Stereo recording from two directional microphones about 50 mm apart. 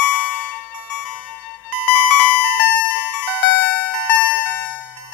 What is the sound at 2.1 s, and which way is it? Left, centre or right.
Music, left.